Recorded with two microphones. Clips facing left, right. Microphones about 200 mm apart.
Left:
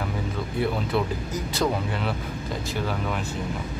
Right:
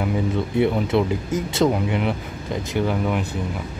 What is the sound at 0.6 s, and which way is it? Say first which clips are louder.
Speech: right 6 dB; 25° right (ahead or behind).